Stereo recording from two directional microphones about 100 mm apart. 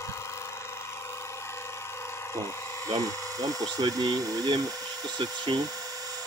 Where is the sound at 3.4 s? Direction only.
40° right (ahead or behind).